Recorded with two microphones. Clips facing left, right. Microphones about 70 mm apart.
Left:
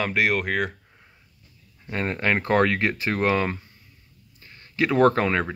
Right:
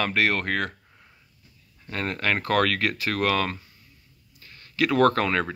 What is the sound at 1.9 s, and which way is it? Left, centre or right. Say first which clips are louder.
Speech: left 2 dB; left.